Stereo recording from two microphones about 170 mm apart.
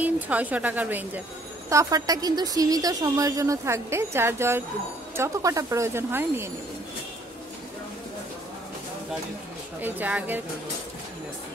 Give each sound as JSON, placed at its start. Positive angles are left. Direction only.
{"t": 0.0, "sound": "a woman's voice", "side_deg": -10}
{"t": 9.8, "sound": "speech", "side_deg": -10}